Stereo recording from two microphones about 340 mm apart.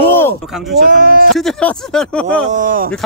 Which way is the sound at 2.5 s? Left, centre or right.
Right.